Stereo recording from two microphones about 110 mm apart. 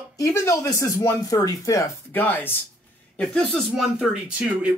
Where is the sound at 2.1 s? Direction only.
15° left (ahead or behind).